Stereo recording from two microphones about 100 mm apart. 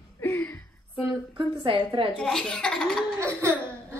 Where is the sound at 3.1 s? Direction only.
25° right (ahead or behind).